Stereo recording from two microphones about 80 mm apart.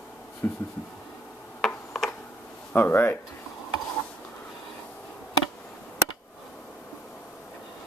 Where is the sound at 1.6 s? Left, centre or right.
Centre.